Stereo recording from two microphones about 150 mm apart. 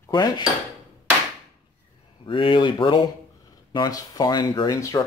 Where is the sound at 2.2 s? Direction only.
35° left (ahead or behind).